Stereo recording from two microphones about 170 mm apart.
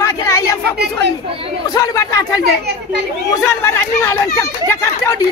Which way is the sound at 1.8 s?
20° left (ahead or behind).